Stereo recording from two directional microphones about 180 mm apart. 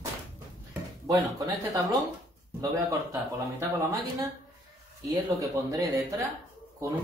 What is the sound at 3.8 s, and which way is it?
Speech, 20° right (ahead or behind).